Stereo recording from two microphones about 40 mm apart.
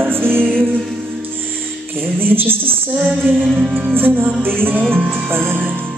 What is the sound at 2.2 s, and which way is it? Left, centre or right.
Music, right.